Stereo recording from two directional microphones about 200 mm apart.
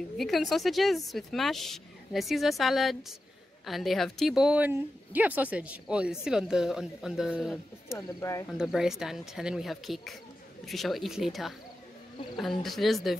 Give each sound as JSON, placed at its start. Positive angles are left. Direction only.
{"t": 0.2, "sound": "a woman's voice", "side_deg": 0}
{"t": 8.1, "sound": "speech", "side_deg": 15}
{"t": 8.5, "sound": "a woman's voice", "side_deg": 0}